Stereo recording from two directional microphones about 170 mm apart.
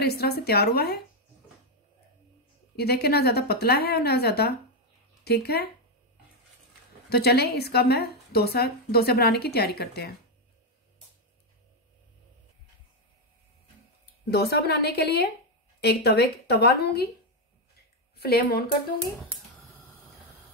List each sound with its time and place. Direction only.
0.0 s a woman's voice: 70° left (ahead or behind)
2.7 s a woman's voice: 70° left (ahead or behind)
7.1 s a woman's voice: 70° left (ahead or behind)
14.3 s a woman's voice: 70° left (ahead or behind)
18.1 s a woman's voice: 65° left (ahead or behind)